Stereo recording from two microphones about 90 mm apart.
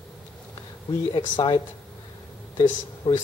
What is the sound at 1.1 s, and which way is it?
Speech, 70° left (ahead or behind).